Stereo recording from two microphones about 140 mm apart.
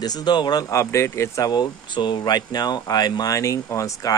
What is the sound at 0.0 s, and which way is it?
Speech, 30° left (ahead or behind).